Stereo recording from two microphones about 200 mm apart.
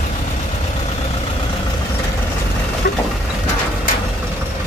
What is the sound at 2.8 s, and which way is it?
Vehicle, 55° left (ahead or behind).